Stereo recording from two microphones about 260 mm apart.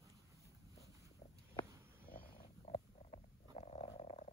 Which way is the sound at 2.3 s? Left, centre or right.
Left.